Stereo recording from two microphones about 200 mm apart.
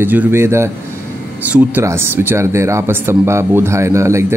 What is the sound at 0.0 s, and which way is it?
Speech, 10° right (ahead or behind).